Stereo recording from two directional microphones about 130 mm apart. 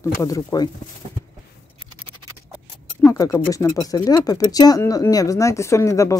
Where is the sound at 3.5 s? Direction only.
25° left (ahead or behind).